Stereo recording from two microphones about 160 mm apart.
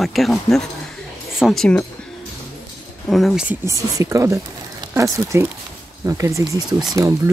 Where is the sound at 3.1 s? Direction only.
Centre (ahead or behind).